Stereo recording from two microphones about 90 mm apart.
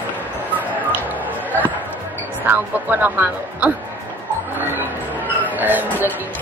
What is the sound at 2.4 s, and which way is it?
Speech, 20° right (ahead or behind).